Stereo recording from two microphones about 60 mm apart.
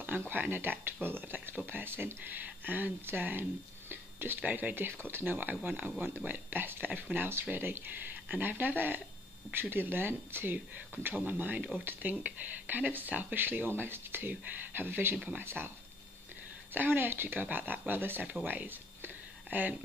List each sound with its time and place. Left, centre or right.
0.3 s speech: right
16.7 s speech: right
18.2 s speech: right